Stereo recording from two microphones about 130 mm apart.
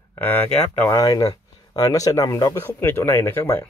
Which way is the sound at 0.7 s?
25° left (ahead or behind).